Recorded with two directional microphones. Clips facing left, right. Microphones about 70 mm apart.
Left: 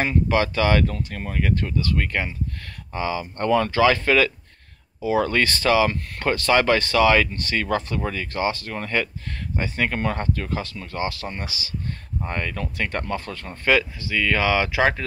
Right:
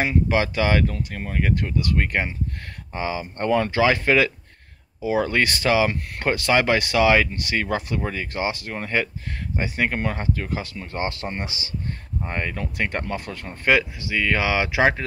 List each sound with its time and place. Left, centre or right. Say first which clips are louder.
0.0 s speech: even; centre
0.8 s speech: even; centre
11.0 s speech: right 1 dB; right